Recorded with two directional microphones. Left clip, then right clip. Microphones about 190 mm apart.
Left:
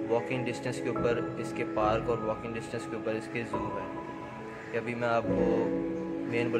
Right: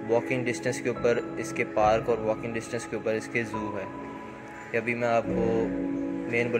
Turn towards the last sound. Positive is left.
turn(degrees=-10)  # may be behind; listen again after turning